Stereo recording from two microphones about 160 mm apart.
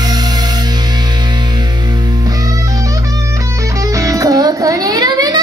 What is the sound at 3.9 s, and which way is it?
Music, 20° right (ahead or behind).